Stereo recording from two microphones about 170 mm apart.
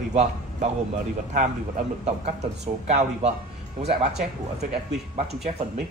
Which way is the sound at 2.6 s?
40° right (ahead or behind).